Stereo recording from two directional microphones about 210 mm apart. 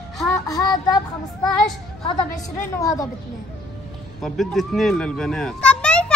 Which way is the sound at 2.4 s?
15° left (ahead or behind).